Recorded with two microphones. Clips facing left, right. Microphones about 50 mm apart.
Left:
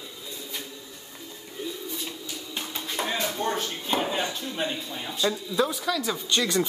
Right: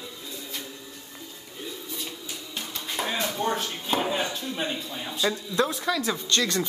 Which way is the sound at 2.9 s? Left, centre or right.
Centre.